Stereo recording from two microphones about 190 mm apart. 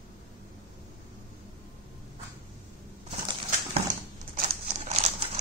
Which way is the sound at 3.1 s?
35° right (ahead or behind).